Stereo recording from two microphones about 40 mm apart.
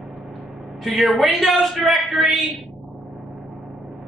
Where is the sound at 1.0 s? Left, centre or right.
Centre.